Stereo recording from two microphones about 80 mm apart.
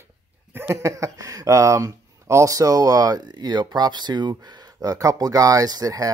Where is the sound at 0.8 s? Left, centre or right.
Right.